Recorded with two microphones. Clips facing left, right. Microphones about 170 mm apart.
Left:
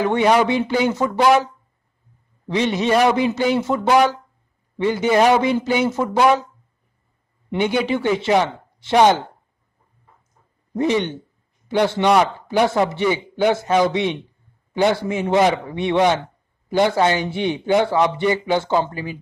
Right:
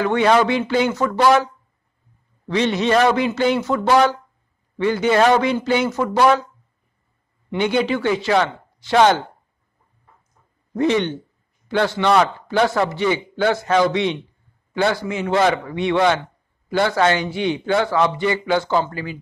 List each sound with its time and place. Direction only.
0.0 s a man's voice: 15° left (ahead or behind)
2.4 s a man's voice: 15° left (ahead or behind)
7.8 s a man's voice: 20° left (ahead or behind)
10.7 s a man's voice: 15° left (ahead or behind)